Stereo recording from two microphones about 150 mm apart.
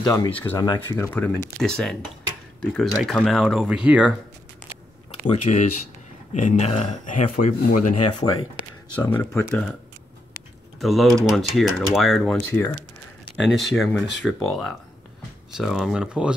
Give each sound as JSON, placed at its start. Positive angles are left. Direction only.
{"t": 0.0, "sound": "speech", "side_deg": 25}
{"t": 0.3, "sound": "speech", "side_deg": 10}
{"t": 0.6, "sound": "speech", "side_deg": 25}
{"t": 5.3, "sound": "speech", "side_deg": 55}
{"t": 9.0, "sound": "speech", "side_deg": 10}
{"t": 10.8, "sound": "speech", "side_deg": 0}
{"t": 12.4, "sound": "speech", "side_deg": 15}
{"t": 13.4, "sound": "speech", "side_deg": 0}